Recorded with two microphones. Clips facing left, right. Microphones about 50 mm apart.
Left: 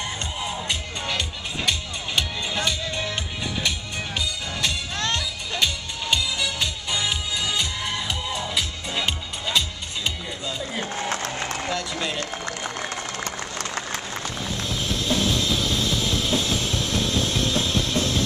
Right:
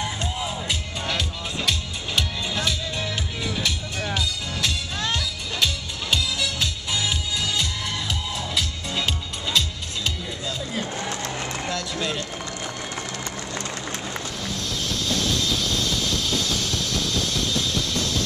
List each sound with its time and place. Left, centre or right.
0.0 s music: centre
11.6 s run: centre
14.4 s music: centre